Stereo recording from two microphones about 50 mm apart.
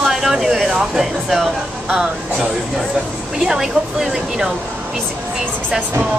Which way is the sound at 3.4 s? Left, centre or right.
Centre.